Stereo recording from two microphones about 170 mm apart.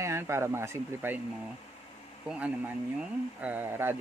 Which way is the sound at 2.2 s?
10° right (ahead or behind).